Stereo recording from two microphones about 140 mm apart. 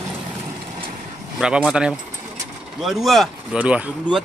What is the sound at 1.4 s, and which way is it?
Speech, 5° right (ahead or behind).